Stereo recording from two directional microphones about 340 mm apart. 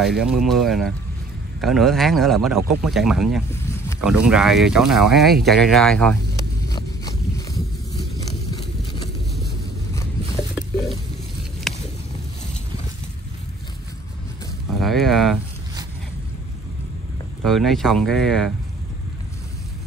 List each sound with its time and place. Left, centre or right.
0.0 s speech: centre
5.1 s a sound: centre
10.5 s stir: centre
11.7 s a sound: centre
14.8 s speech: centre
17.5 s speech: centre